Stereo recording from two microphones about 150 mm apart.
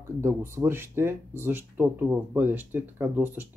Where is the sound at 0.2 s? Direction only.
15° right (ahead or behind).